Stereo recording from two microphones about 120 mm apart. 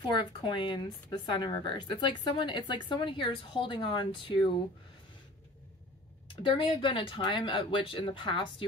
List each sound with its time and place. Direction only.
0.0 s speech: 40° left (ahead or behind)
6.2 s speech: 45° left (ahead or behind)